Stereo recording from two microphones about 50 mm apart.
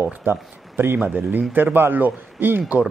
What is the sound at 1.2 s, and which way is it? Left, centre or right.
Speech, right.